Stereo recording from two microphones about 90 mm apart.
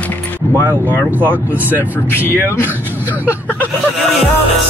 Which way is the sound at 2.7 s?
20° right (ahead or behind).